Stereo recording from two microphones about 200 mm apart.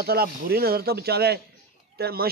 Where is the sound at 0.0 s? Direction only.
50° right (ahead or behind).